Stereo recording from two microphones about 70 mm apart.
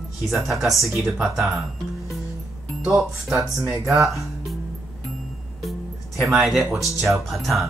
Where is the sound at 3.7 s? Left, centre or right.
Right.